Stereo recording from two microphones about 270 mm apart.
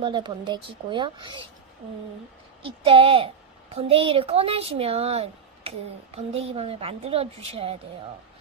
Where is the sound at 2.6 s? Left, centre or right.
Centre.